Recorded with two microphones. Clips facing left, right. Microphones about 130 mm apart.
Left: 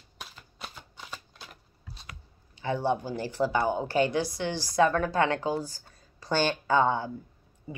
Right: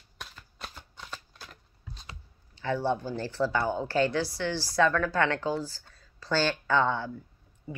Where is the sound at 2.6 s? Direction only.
15° left (ahead or behind).